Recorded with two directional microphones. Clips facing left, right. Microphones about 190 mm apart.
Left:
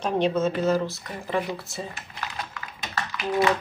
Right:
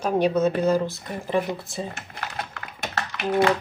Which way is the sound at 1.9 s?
50° right (ahead or behind).